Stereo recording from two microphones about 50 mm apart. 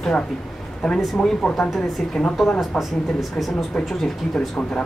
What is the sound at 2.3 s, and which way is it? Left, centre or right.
Speech, centre.